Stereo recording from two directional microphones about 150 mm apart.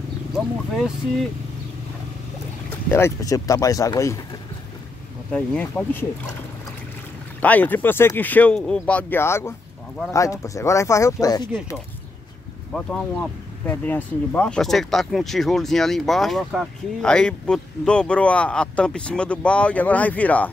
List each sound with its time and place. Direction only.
0.3 s speech: centre (ahead or behind)
2.9 s speech: 20° left (ahead or behind)
5.3 s speech: 10° left (ahead or behind)
7.3 s speech: 10° left (ahead or behind)
12.7 s speech: 5° left (ahead or behind)